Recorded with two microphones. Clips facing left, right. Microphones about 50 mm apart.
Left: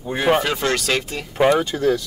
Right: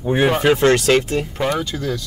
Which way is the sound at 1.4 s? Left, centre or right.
Left.